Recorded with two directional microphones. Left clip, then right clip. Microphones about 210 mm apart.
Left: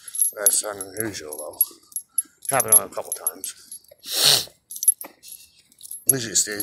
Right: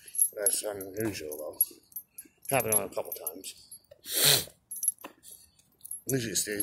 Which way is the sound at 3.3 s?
10° right (ahead or behind).